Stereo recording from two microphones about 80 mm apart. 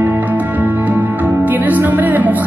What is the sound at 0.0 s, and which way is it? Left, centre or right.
Music, right.